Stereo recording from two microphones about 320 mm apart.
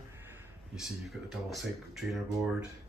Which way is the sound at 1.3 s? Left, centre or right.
Centre.